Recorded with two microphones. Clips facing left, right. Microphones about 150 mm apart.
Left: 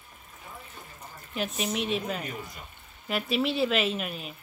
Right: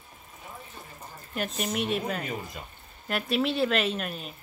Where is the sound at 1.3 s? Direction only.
Centre (ahead or behind).